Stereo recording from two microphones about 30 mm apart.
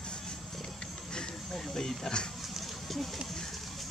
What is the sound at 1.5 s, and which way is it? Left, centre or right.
Speech, centre.